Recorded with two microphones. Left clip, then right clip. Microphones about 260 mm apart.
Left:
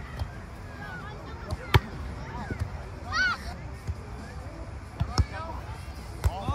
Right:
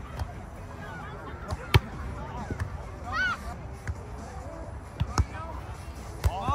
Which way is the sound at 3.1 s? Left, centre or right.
Left.